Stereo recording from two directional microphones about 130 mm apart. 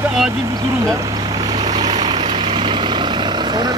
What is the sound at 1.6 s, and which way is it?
Vehicle, 35° right (ahead or behind).